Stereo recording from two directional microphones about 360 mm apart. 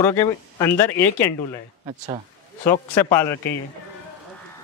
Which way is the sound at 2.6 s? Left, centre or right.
Centre.